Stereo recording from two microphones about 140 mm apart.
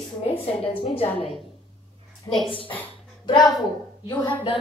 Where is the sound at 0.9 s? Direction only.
45° left (ahead or behind).